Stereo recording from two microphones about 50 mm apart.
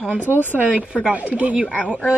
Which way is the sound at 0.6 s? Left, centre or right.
Right.